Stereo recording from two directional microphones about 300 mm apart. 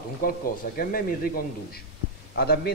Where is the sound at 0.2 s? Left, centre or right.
Left.